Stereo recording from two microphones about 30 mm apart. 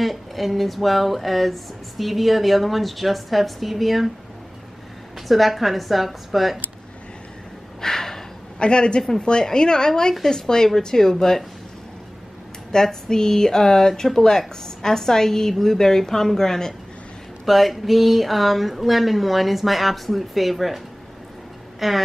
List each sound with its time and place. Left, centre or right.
0.0 s speech: centre
5.3 s speech: centre
7.8 s a sound: centre
8.5 s a woman's voice: left; by 11.4 s centre
12.7 s a woman's voice: centre
17.5 s speech: centre